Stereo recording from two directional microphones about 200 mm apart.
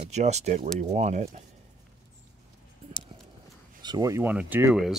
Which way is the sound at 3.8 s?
20° right (ahead or behind).